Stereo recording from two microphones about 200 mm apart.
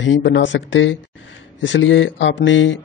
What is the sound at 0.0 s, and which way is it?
Speech, 65° left (ahead or behind).